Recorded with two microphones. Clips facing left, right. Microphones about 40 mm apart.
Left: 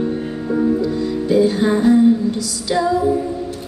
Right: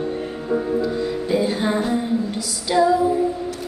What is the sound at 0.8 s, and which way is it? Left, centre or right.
Music, right.